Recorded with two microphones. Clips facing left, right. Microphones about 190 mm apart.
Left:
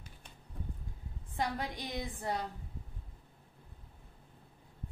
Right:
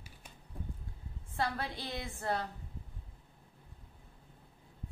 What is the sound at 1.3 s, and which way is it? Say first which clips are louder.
A woman's voice: even; 15° left (ahead or behind).